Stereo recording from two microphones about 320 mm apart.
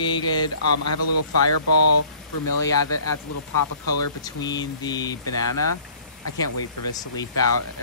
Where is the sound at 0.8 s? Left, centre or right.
Left.